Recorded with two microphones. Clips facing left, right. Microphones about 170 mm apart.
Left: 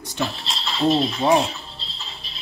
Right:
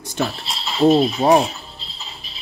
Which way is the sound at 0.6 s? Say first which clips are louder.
Right 5 dB; 5° right (ahead or behind).